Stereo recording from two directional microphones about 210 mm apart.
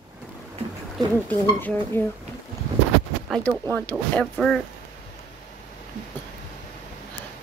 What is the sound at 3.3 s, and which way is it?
Speech, 5° left (ahead or behind).